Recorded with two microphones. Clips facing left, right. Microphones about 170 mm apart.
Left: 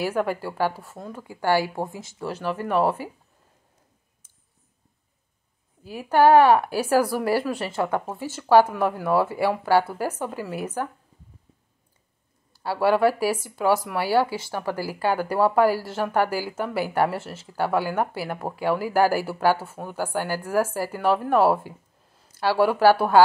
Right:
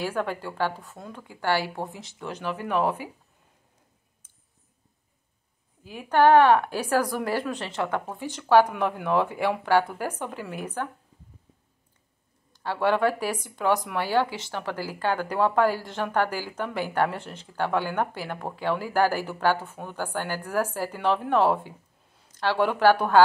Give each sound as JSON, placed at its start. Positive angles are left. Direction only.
{"t": 0.0, "sound": "speech", "side_deg": 10}
{"t": 1.9, "sound": "speech", "side_deg": 45}
{"t": 2.1, "sound": "speech", "side_deg": 5}
{"t": 5.9, "sound": "speech", "side_deg": 5}
{"t": 12.5, "sound": "speech", "side_deg": 10}